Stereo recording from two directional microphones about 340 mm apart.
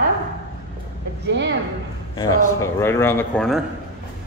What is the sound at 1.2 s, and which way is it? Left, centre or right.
Speech, right.